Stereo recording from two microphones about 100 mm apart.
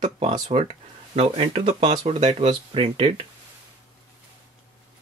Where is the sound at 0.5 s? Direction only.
90° right.